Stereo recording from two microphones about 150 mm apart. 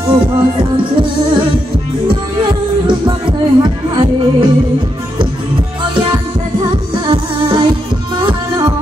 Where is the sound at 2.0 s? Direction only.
30° right (ahead or behind).